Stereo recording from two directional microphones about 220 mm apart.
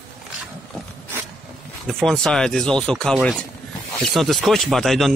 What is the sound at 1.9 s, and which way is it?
Speech, centre (ahead or behind).